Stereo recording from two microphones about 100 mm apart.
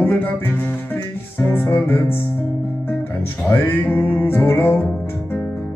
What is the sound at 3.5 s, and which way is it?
Music, 20° left (ahead or behind).